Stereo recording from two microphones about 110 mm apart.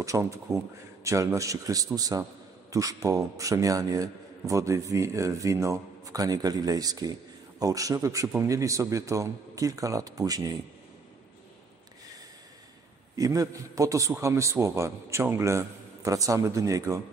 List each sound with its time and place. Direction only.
0.0 s a man's voice: 30° right (ahead or behind)
13.1 s a man's voice: 35° right (ahead or behind)